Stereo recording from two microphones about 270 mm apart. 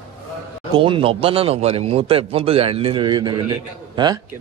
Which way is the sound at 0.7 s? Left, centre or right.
Centre.